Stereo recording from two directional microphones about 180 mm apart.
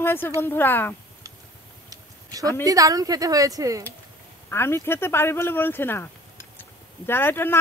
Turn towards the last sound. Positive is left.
turn(degrees=10)  # may be behind; listen again after turning